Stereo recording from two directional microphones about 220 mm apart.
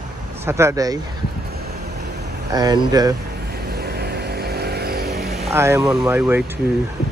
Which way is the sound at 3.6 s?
45° right (ahead or behind).